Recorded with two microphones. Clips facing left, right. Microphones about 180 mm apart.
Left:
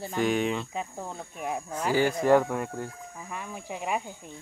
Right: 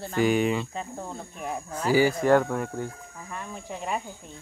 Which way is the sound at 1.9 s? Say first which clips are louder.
Right 2 dB; 5° right (ahead or behind).